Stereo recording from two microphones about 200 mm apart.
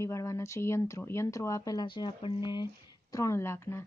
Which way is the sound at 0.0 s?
15° left (ahead or behind).